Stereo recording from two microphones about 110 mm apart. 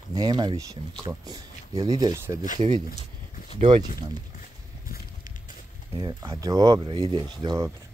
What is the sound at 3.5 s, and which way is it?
Speech, 50° right (ahead or behind).